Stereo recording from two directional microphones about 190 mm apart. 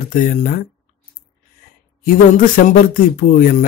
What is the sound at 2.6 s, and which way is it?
Speech, 45° left (ahead or behind).